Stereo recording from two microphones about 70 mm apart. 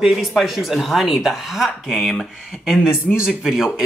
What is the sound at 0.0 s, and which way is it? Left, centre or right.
Speech, centre.